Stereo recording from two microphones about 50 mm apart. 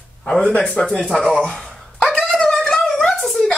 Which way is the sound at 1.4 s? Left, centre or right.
Centre.